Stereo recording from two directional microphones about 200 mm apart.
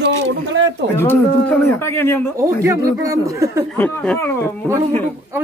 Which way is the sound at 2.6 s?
15° right (ahead or behind).